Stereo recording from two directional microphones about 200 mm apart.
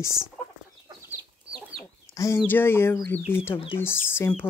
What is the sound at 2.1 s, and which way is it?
Speech, 15° left (ahead or behind).